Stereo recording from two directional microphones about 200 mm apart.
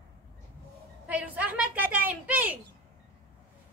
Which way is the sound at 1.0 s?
10° right (ahead or behind).